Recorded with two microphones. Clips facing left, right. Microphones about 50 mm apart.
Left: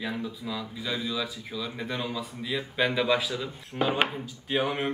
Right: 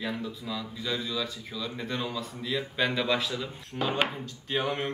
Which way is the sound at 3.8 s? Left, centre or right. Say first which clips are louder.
Left 3 dB; left.